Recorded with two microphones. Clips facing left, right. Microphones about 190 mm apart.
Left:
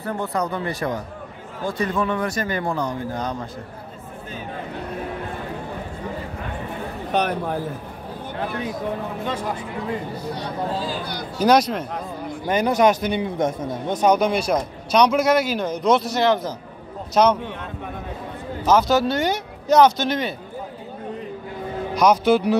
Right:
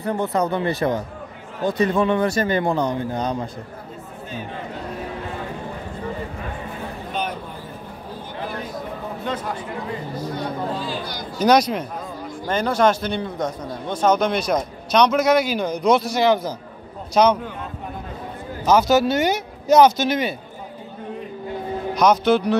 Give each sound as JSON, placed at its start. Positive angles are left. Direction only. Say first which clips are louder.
{"t": 0.0, "sound": "speech", "louder": "right 3 dB", "side_deg": -20}
{"t": 7.1, "sound": "a man's voice", "louder": "left 7 dB", "side_deg": 70}
{"t": 10.3, "sound": "speech", "louder": "even", "side_deg": 40}
{"t": 11.3, "sound": "a man's voice", "louder": "even", "side_deg": 5}
{"t": 12.4, "sound": "a man's voice", "louder": "left 1 dB", "side_deg": 15}
{"t": 14.0, "sound": "a man's voice", "louder": "even", "side_deg": 10}
{"t": 18.7, "sound": "speech", "louder": "right 1 dB", "side_deg": -5}
{"t": 21.9, "sound": "a man's voice", "louder": "even", "side_deg": 10}